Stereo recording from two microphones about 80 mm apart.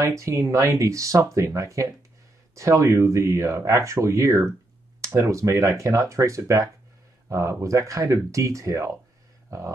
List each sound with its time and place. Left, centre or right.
0.0 s speech: right